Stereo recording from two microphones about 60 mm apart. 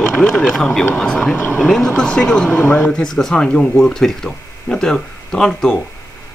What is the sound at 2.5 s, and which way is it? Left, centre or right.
Speech, left.